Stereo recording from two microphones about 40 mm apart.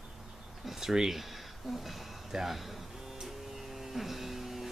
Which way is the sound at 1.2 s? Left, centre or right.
Centre.